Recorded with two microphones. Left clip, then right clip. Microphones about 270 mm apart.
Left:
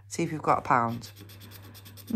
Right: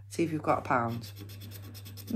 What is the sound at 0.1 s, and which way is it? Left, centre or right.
Speech, left.